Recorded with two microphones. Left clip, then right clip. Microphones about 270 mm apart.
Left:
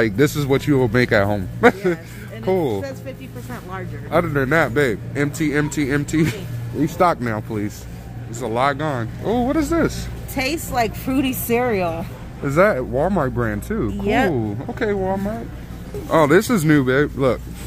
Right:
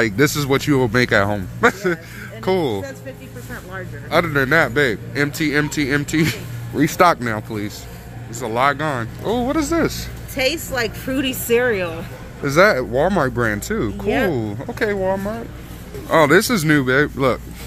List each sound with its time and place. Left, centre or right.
0.0 s a man's voice: centre
4.1 s a man's voice: centre
10.3 s a woman's voice: left
12.4 s a man's voice: centre
14.0 s speech: left
14.3 s a man's voice: centre